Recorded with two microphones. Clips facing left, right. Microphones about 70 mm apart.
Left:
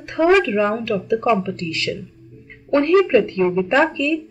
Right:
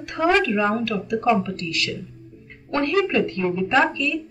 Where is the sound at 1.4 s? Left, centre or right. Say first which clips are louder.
Left 3 dB; left.